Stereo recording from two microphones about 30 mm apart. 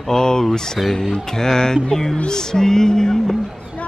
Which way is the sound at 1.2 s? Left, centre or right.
Centre.